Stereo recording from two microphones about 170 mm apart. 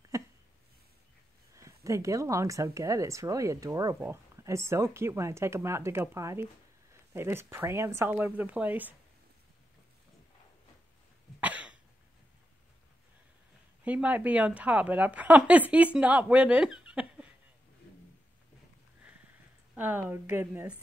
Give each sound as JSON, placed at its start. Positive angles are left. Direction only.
{"t": 0.1, "sound": "a sound", "side_deg": -20}
{"t": 1.5, "sound": "speech", "side_deg": -20}
{"t": 11.4, "sound": "cough", "side_deg": -10}
{"t": 13.8, "sound": "speech", "side_deg": -10}
{"t": 19.7, "sound": "speech", "side_deg": -10}